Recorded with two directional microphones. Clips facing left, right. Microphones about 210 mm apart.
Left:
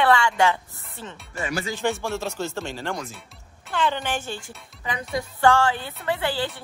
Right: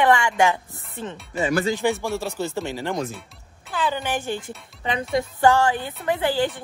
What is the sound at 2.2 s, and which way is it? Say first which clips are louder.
Speech: right 2 dB; 15° right (ahead or behind).